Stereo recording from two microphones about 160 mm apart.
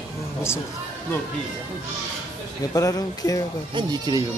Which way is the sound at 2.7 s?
20° left (ahead or behind).